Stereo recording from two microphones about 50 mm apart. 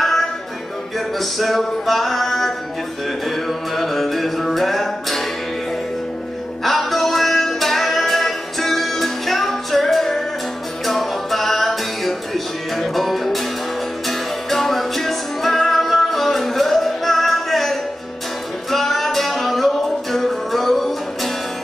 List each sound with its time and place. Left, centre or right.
0.9 s male singing: centre
3.3 s music: centre
6.6 s music: centre